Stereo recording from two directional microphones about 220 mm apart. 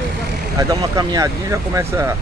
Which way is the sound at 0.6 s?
15° right (ahead or behind).